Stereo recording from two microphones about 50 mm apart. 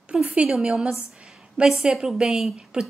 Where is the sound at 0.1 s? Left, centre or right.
Right.